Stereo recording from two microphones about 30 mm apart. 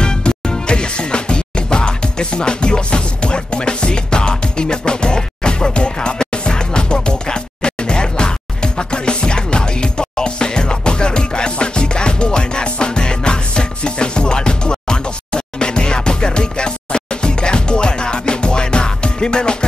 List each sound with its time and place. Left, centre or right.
0.0 s music: left